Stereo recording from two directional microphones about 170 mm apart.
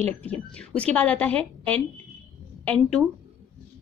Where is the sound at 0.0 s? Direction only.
10° left (ahead or behind).